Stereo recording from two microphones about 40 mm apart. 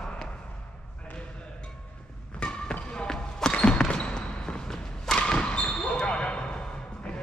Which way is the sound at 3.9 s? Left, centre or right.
Left.